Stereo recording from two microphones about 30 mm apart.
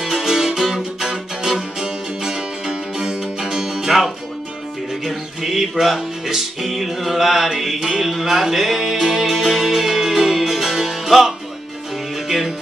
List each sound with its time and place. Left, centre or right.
0.0 s music: centre
0.6 s music: centre
1.8 s music: right
5.0 s music: centre